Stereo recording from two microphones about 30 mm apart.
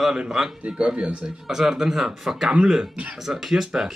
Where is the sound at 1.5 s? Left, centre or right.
Centre.